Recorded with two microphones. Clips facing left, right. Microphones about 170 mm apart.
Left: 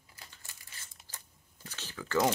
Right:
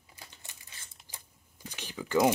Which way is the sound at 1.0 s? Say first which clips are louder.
Right 1 dB; 15° right (ahead or behind).